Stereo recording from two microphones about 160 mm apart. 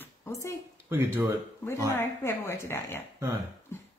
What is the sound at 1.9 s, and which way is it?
A woman's voice, 15° left (ahead or behind).